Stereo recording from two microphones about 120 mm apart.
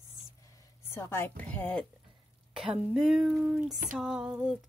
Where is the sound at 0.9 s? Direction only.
20° left (ahead or behind).